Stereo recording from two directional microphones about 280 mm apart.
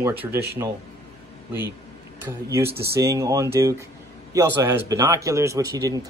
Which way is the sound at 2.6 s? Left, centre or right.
Right.